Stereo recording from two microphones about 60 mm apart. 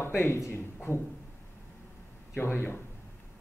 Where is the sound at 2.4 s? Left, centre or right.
Left.